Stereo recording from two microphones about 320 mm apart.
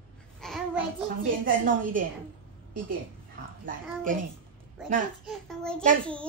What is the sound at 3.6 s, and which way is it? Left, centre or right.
Speech, right.